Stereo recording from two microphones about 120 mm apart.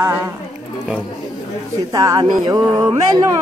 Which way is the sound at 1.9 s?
30° right (ahead or behind).